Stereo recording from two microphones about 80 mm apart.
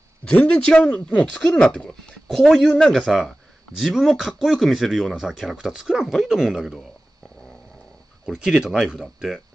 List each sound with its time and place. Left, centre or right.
0.2 s speech: centre
2.2 s speech: centre
8.3 s speech: centre